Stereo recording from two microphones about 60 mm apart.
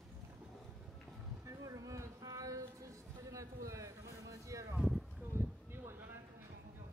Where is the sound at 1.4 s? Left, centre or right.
Right.